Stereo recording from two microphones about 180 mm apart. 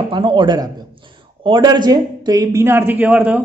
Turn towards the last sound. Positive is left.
turn(degrees=-5)  # may be behind; listen again after turning